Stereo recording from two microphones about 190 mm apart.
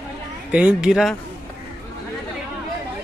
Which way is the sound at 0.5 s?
5° right (ahead or behind).